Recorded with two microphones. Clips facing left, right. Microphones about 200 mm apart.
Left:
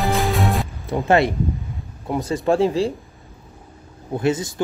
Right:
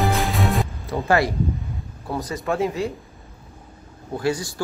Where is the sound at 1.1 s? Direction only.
25° left (ahead or behind).